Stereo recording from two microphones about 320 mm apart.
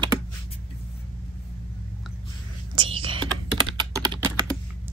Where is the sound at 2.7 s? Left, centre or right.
Centre.